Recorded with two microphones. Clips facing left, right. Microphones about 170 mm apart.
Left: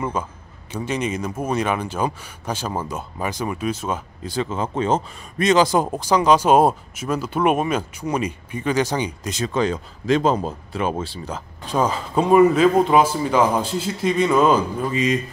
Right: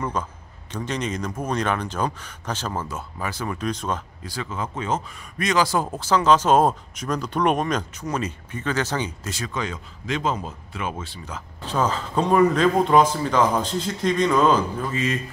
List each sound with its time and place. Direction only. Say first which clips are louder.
0.0 s speech: left 2 dB; 10° left (ahead or behind)
4.2 s speech: left 6 dB; 25° left (ahead or behind)
9.5 s speech: left 11 dB; 35° left (ahead or behind)
11.6 s speech: left 2 dB; 10° left (ahead or behind)